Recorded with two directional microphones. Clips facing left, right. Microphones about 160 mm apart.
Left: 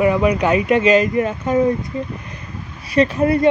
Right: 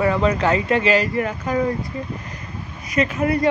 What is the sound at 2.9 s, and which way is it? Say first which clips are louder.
Speech: left 5 dB; 30° left (ahead or behind).